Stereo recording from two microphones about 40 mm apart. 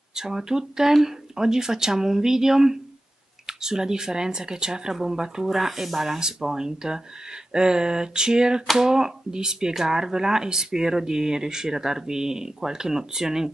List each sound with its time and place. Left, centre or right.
0.1 s speech: centre
7.5 s a sound: centre
8.7 s speech: centre